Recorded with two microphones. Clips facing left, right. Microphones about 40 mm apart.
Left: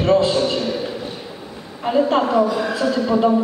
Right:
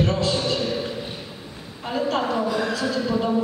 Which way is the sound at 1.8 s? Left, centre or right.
Centre.